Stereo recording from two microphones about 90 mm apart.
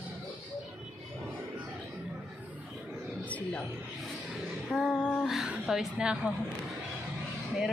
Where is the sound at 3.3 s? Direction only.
10° left (ahead or behind).